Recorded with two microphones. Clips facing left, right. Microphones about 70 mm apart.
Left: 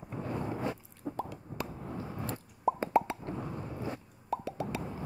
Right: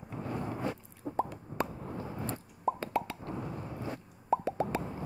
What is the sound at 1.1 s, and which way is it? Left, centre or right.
Plop, right.